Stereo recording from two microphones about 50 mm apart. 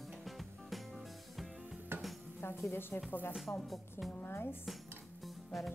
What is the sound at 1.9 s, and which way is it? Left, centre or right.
Music, right.